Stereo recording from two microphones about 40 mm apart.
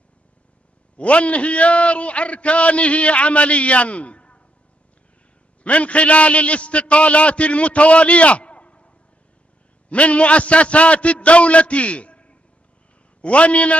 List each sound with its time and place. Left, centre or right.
0.9 s a man's voice: left
5.6 s a man's voice: left